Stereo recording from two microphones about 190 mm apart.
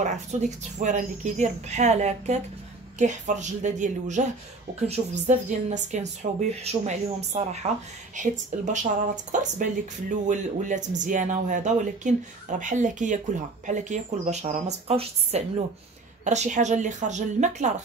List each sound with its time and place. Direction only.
0.0 s speech: 40° right (ahead or behind)